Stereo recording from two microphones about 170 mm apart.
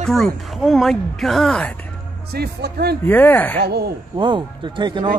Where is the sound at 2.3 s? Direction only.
70° right (ahead or behind).